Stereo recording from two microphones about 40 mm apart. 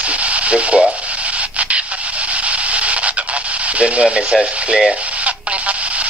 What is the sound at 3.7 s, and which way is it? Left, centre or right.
Speech, right.